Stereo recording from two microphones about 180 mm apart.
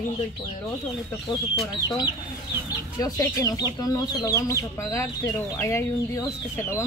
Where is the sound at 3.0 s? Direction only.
20° left (ahead or behind).